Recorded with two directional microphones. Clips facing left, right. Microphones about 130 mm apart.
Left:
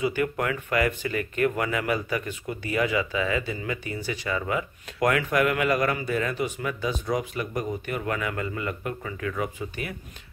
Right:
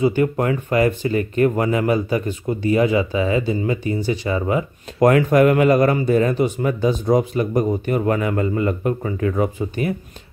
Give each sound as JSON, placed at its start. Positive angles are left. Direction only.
{"t": 0.0, "sound": "speech", "side_deg": -30}